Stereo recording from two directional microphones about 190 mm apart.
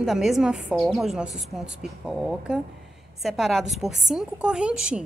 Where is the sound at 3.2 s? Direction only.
Centre (ahead or behind).